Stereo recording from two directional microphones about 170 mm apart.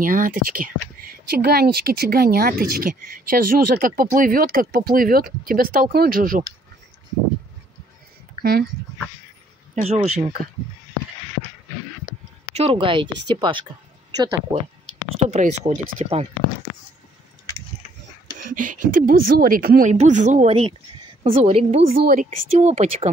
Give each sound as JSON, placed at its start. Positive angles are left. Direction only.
{"t": 0.0, "sound": "speech", "side_deg": -55}
{"t": 8.4, "sound": "speech", "side_deg": -65}
{"t": 12.5, "sound": "speech", "side_deg": -35}
{"t": 15.0, "sound": "speech", "side_deg": -40}
{"t": 18.4, "sound": "speech", "side_deg": -50}
{"t": 19.9, "sound": "speech", "side_deg": -45}
{"t": 22.0, "sound": "speech", "side_deg": -50}